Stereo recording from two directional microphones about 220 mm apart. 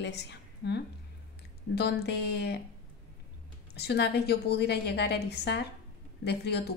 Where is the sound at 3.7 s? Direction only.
50° left (ahead or behind).